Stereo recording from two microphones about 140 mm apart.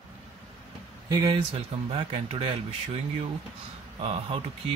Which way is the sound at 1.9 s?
45° right (ahead or behind).